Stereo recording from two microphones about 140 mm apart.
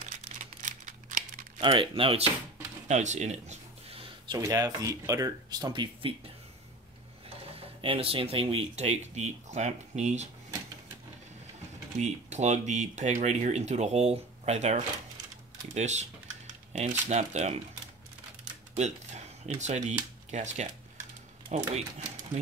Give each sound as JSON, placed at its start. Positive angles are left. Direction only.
{"t": 0.0, "sound": "crumpling", "side_deg": -55}
{"t": 1.6, "sound": "speech", "side_deg": -40}
{"t": 2.9, "sound": "a sound", "side_deg": -55}
{"t": 4.3, "sound": "speech", "side_deg": -25}
{"t": 7.5, "sound": "speech", "side_deg": -40}
{"t": 12.0, "sound": "speech", "side_deg": -55}
{"t": 17.1, "sound": "speech", "side_deg": -55}
{"t": 18.8, "sound": "speech", "side_deg": -55}